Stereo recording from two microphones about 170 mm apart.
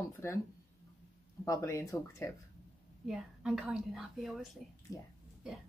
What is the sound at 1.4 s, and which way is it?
Speech, 20° left (ahead or behind).